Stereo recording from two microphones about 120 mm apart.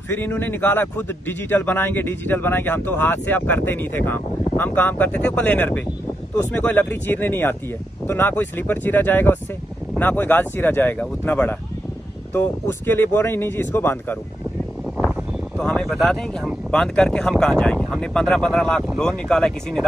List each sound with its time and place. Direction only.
0.1 s speech: 15° left (ahead or behind)
15.6 s speech: 5° left (ahead or behind)